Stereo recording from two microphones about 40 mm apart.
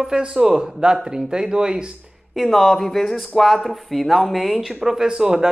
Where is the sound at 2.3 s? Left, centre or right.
Centre.